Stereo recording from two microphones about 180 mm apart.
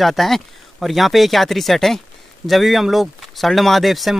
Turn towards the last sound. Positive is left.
turn(degrees=0)  # may be behind; listen again after turning